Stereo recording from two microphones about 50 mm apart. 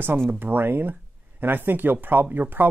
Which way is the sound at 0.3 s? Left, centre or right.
Right.